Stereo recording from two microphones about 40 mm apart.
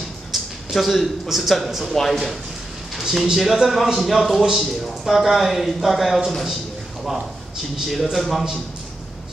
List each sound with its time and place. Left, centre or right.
0.3 s speech: centre
3.0 s speech: centre
4.6 s a sound: centre
5.1 s a man's voice: centre